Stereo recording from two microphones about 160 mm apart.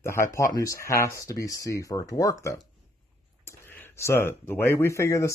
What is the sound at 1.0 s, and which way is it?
Speech, 20° left (ahead or behind).